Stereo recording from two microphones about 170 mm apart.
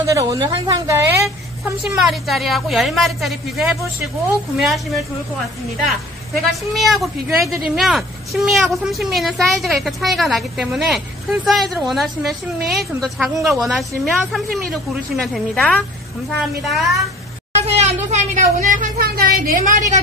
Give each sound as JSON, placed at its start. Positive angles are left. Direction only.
{"t": 0.0, "sound": "a woman's voice", "side_deg": -20}
{"t": 1.2, "sound": "a woman's voice", "side_deg": 0}
{"t": 6.5, "sound": "a woman's voice", "side_deg": 0}
{"t": 17.6, "sound": "a woman's voice", "side_deg": -40}